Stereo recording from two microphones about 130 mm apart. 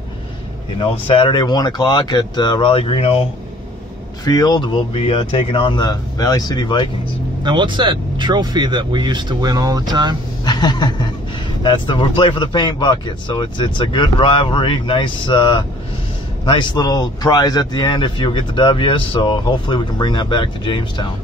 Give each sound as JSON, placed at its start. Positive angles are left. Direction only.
{"t": 0.7, "sound": "speech", "side_deg": 40}
{"t": 4.2, "sound": "speech", "side_deg": 30}
{"t": 7.4, "sound": "speech", "side_deg": -35}
{"t": 10.4, "sound": "speech", "side_deg": 35}